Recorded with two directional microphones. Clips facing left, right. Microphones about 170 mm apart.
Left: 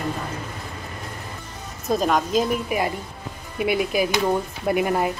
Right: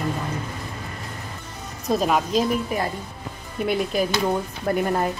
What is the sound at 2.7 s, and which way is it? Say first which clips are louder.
A woman's voice: left 2 dB; 10° left (ahead or behind).